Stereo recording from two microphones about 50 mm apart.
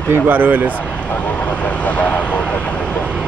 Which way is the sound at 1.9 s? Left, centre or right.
Left.